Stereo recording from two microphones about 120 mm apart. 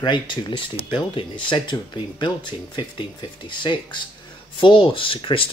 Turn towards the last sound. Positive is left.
turn(degrees=45)  # may be behind; listen again after turning